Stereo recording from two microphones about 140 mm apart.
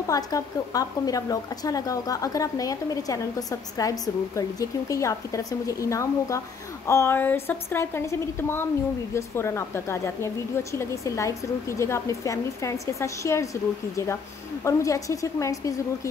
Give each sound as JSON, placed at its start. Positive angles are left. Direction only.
{"t": 0.1, "sound": "a woman's voice", "side_deg": 25}
{"t": 14.6, "sound": "a woman's voice", "side_deg": 20}